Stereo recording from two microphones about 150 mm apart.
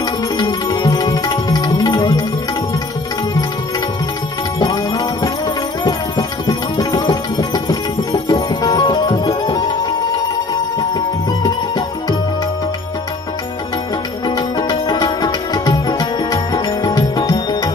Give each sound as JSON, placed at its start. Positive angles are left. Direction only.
{"t": 0.0, "sound": "music", "side_deg": 25}
{"t": 4.6, "sound": "music", "side_deg": 25}
{"t": 14.2, "sound": "music", "side_deg": 30}